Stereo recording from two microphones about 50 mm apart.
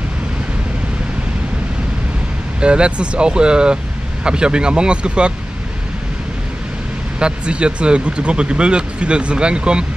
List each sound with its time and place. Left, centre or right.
2.6 s speech: right
7.2 s speech: centre